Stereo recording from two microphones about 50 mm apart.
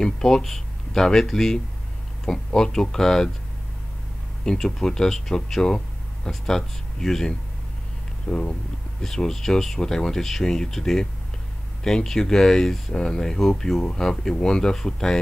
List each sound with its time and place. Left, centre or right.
0.0 s speech: centre
4.5 s speech: centre
8.3 s speech: left
9.0 s speech: centre